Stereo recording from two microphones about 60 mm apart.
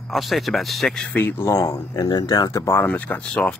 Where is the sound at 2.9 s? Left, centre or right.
Left.